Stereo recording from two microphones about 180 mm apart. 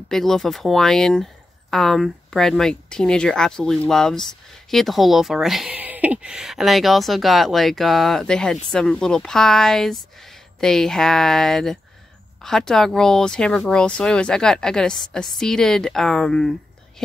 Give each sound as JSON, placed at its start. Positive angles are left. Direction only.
{"t": 0.1, "sound": "speech", "side_deg": 0}